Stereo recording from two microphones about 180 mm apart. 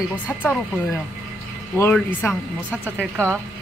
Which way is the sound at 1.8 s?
10° left (ahead or behind).